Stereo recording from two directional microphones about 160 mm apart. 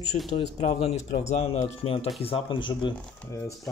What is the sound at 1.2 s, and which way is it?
Speech, 45° left (ahead or behind).